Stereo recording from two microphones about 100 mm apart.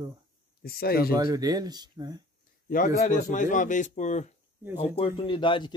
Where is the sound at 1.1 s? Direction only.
40° right (ahead or behind).